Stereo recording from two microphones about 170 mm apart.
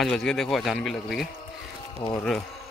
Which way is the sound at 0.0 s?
5° left (ahead or behind).